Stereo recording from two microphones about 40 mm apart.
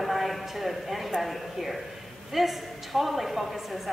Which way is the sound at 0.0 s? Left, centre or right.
Centre.